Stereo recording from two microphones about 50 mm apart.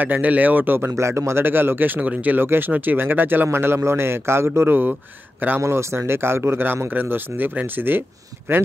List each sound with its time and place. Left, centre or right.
0.0 s speech: right
0.9 s speech: right
1.4 s speech: right
2.4 s speech: right
2.7 s speech: right
3.5 s a man's voice: right
5.6 s a man's voice: right
6.9 s speech: right
8.5 s a man's voice: right